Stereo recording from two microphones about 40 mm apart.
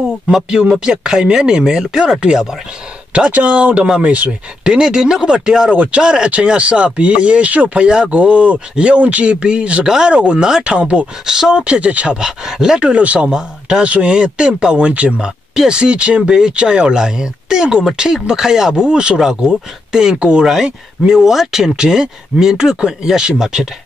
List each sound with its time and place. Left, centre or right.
0.5 s speech: right
3.3 s speech: right
4.6 s speech: right
5.8 s speech: right
8.1 s speech: right
9.8 s speech: centre
11.2 s speech: centre
11.5 s speech: right
12.2 s speech: centre
12.8 s speech: right
13.2 s speech: centre
13.8 s speech: right
15.1 s speech: centre
20.4 s speech: centre